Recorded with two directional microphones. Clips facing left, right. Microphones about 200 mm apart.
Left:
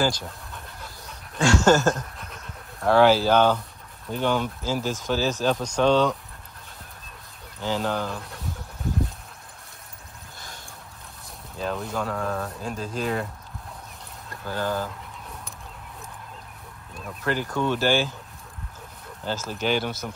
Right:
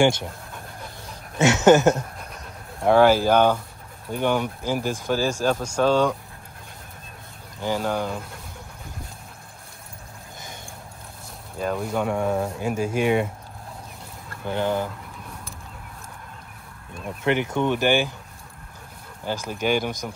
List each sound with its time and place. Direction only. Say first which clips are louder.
0.0 s speech: right 5 dB; 25° right (ahead or behind)
1.0 s a sound: right 3 dB; 20° right (ahead or behind)
2.8 s speech: right 1 dB; 10° right (ahead or behind)
7.6 s speech: right 2 dB; 10° right (ahead or behind)
11.6 s speech: right 4 dB; 10° right (ahead or behind)
12.3 s speech: right 5 dB; 25° right (ahead or behind)
12.5 s speech: right 6 dB; 80° right
14.4 s speech: right 3 dB; 20° right (ahead or behind)
17.2 s speech: right 3 dB; 20° right (ahead or behind)
19.2 s speech: right 2 dB; 15° right (ahead or behind)